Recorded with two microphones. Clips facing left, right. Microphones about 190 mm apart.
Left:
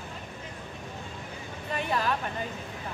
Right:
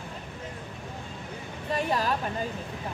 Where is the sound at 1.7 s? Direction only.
35° right (ahead or behind).